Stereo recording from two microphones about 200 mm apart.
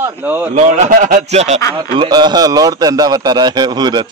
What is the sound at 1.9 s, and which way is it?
A man's voice, 25° right (ahead or behind).